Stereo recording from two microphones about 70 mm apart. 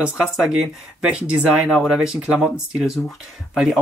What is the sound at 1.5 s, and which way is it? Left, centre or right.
Speech, centre.